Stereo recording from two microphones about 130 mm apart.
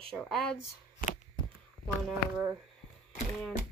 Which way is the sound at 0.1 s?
5° left (ahead or behind).